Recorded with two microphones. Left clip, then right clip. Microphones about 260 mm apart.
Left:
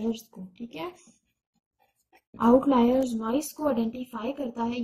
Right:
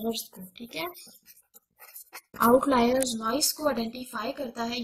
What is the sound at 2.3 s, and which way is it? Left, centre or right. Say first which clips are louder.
A woman's voice: even; right.